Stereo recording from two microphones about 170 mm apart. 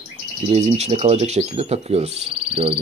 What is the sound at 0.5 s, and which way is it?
Speech, 40° right (ahead or behind).